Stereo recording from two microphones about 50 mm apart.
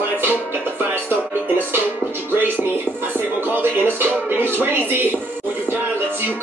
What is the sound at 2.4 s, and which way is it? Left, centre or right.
Music, right.